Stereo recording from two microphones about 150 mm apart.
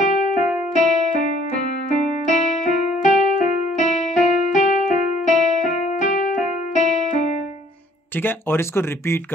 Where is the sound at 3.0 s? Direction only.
55° left (ahead or behind).